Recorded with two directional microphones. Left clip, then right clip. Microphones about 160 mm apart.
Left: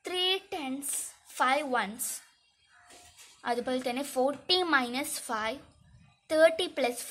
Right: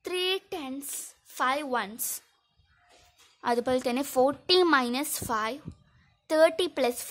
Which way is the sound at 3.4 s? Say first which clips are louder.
Right 5 dB; 45° right (ahead or behind).